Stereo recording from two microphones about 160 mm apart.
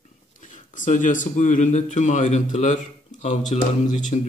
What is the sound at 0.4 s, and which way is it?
Speech, 50° left (ahead or behind).